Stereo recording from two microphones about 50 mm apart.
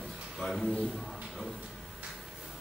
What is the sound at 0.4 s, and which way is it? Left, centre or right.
Speech, centre.